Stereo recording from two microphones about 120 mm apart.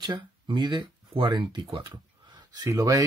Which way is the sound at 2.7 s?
30° right (ahead or behind).